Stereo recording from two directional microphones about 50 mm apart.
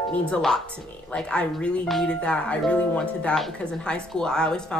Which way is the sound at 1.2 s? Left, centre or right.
Left.